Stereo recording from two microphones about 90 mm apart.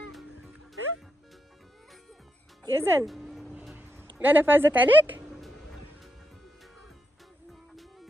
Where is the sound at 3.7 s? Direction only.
20° right (ahead or behind).